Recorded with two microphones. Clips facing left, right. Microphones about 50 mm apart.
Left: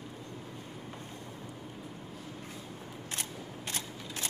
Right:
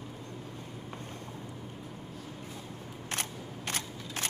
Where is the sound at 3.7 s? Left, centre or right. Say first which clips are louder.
Right 4 dB; right.